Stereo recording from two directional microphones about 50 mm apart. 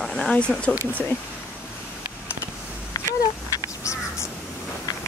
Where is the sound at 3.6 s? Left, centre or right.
Left.